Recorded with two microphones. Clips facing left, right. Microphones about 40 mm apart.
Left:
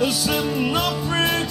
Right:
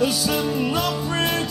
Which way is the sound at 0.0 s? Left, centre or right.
Centre.